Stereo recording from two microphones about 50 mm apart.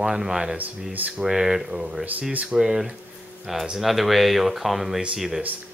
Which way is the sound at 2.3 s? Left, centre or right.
Right.